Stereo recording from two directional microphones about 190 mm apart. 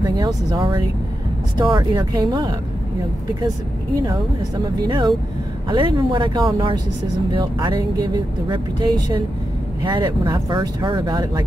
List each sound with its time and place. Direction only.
0.0 s a woman's voice: 20° right (ahead or behind)
4.8 s a woman's voice: 25° right (ahead or behind)